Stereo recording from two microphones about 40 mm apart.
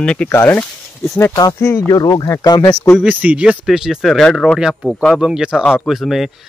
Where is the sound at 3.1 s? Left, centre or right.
Right.